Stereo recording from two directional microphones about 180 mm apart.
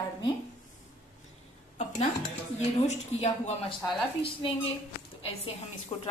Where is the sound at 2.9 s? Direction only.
40° left (ahead or behind).